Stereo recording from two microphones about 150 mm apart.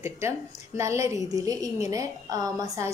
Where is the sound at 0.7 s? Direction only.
20° right (ahead or behind).